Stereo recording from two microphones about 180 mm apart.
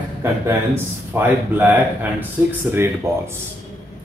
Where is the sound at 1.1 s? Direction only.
10° right (ahead or behind).